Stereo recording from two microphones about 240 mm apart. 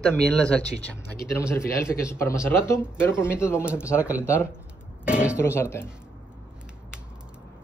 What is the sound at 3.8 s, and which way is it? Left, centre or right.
Speech, centre.